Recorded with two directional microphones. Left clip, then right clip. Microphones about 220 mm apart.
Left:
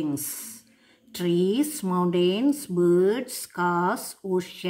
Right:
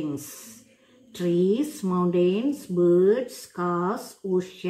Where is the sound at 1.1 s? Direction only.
45° left (ahead or behind).